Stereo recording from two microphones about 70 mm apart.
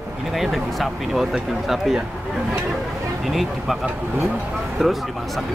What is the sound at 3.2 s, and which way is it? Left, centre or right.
Speech, centre.